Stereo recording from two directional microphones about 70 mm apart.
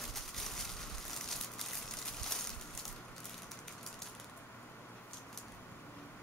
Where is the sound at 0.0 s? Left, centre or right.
Centre.